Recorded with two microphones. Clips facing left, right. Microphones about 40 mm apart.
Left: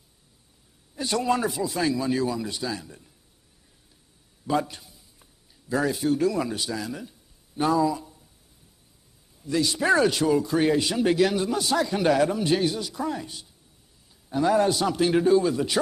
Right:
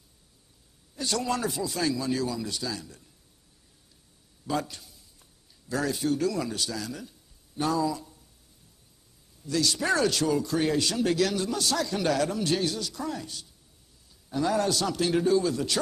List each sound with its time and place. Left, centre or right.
0.9 s a man's voice: centre
1.5 s speech: centre
1.8 s a man's voice: centre
4.5 s a sound: left
6.0 s a man's voice: centre
9.4 s a man's voice: centre